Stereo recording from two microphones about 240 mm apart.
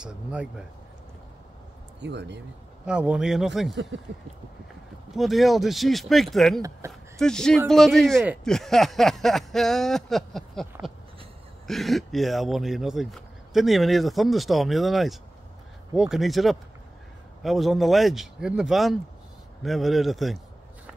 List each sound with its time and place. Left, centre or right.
0.0 s speech: centre
2.0 s speech: right
2.8 s speech: centre
5.1 s speech: centre